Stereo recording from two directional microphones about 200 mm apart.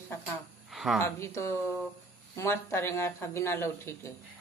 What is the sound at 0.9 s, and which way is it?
Speech, 15° left (ahead or behind).